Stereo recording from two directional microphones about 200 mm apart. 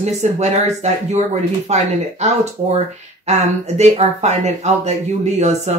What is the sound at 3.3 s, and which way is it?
Speech, 35° right (ahead or behind).